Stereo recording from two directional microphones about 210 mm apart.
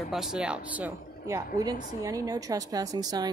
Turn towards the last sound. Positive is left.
turn(degrees=-20)  # may be behind; listen again after turning